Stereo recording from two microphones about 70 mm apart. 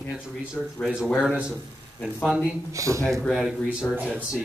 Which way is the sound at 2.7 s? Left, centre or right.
Right.